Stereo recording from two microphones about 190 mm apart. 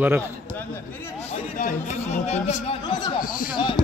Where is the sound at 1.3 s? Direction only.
40° left (ahead or behind); by 3.1 s 20° left (ahead or behind).